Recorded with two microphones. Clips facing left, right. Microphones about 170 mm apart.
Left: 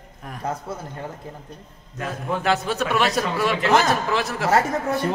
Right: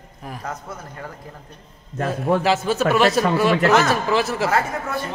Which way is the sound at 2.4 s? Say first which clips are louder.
Right 3 dB; centre (ahead or behind).